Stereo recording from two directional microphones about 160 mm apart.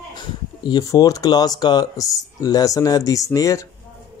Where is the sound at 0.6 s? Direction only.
25° left (ahead or behind).